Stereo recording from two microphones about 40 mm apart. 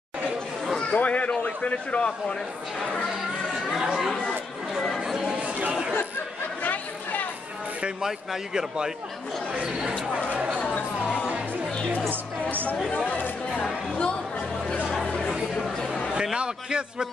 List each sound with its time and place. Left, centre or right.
0.9 s speech: left
3.5 s speech: centre
5.4 s speech: right
5.7 s speech: right
6.6 s chatter: left
8.0 s speech: centre
10.3 s speech: right
10.6 s chatter: left
12.1 s speech: right
12.9 s speech: left
16.2 s a man's voice: centre